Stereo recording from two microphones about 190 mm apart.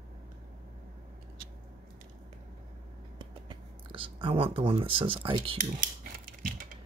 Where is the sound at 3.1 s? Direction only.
25° right (ahead or behind).